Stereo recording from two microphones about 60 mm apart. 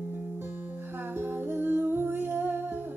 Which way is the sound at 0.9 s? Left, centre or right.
Right.